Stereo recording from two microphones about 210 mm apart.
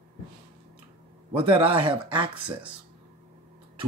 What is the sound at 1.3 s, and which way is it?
Speech, 25° right (ahead or behind).